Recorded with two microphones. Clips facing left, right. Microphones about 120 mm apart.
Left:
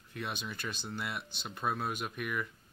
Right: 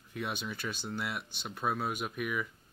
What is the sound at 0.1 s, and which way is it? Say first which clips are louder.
Speech: right 2 dB; 5° right (ahead or behind).